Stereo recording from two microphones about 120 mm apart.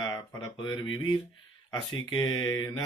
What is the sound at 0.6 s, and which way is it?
Speech, 40° left (ahead or behind).